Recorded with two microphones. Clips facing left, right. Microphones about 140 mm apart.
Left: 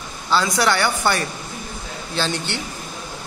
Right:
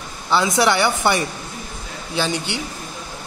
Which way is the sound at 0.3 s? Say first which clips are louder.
Right 2 dB; 20° right (ahead or behind).